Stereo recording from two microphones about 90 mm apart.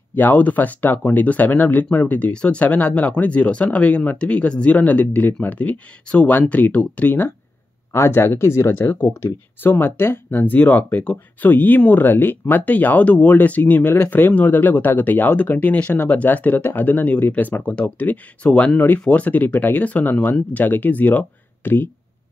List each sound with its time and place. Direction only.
0.1 s speech: 20° left (ahead or behind)